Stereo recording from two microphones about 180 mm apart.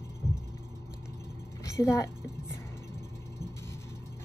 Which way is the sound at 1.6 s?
15° left (ahead or behind).